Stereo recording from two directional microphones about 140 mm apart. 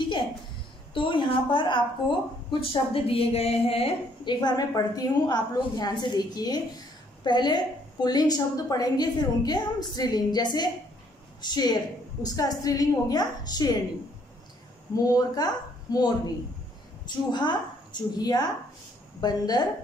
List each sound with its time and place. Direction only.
0.9 s a woman's voice: 35° left (ahead or behind)
15.0 s a woman's voice: 25° left (ahead or behind)